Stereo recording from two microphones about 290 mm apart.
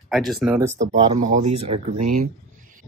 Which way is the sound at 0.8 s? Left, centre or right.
Right.